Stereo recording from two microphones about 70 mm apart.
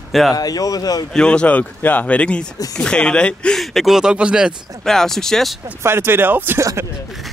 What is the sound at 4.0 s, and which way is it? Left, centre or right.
Speech, centre.